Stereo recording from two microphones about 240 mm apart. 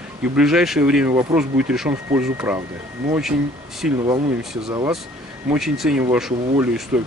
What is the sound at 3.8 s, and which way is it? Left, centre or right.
Speech, centre.